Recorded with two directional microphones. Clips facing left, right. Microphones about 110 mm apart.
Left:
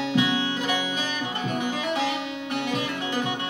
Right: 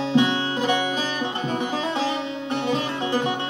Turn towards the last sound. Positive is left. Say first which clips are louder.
# right 4 dB
turn(degrees=-30)  # may be behind; listen again after turning